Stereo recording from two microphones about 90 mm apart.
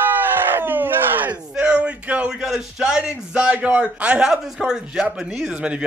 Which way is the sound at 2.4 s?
5° right (ahead or behind).